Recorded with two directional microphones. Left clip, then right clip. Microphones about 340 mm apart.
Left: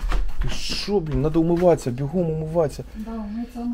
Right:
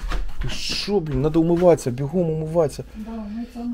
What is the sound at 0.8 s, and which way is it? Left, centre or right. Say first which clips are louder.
Speech: even; right.